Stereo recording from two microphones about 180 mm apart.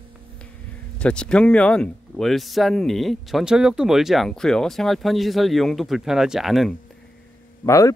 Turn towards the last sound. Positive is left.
turn(degrees=15)  # may be behind; listen again after turning